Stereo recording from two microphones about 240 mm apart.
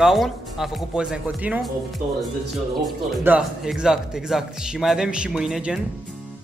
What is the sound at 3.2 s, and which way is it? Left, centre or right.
Speech, centre.